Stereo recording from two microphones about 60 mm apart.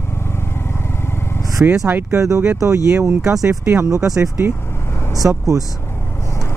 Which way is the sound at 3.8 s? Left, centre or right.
Right.